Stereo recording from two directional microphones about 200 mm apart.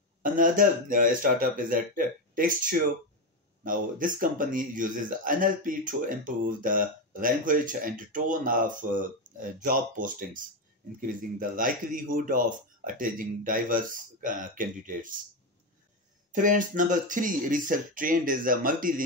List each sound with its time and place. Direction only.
0.2 s a man's voice: 40° right (ahead or behind)
16.3 s a man's voice: 40° right (ahead or behind)